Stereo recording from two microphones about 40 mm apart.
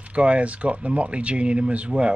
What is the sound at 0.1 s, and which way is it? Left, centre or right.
Speech, right.